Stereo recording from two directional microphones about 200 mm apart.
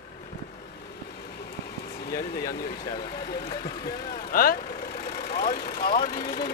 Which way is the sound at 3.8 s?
45° left (ahead or behind).